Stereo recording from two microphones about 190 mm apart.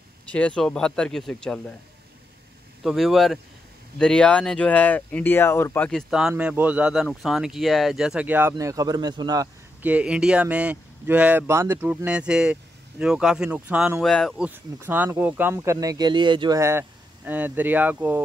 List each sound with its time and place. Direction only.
0.3 s speech: 5° left (ahead or behind)
2.8 s speech: centre (ahead or behind); by 9.8 s 20° right (ahead or behind)
9.8 s speech: 5° right (ahead or behind)
14.5 s speech: 10° right (ahead or behind)